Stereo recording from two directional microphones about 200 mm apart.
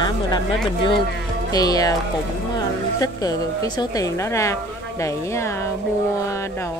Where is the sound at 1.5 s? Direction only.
20° left (ahead or behind).